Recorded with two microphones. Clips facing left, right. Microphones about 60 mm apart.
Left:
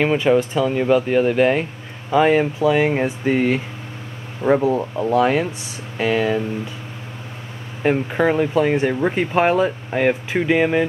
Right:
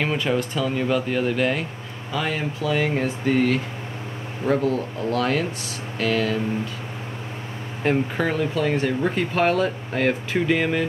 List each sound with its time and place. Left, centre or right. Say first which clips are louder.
0.0 s speech: left 7 dB; centre
7.8 s speech: left 4 dB; centre